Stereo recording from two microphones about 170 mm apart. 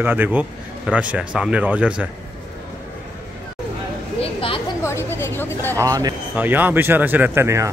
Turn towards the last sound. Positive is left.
turn(degrees=-15)  # may be behind; listen again after turning